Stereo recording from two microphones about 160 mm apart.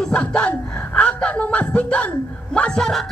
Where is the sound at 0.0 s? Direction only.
5° left (ahead or behind).